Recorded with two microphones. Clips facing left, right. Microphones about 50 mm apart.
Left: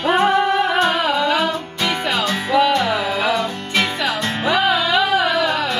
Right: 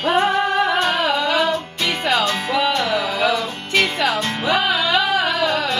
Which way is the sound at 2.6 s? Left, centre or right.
Left.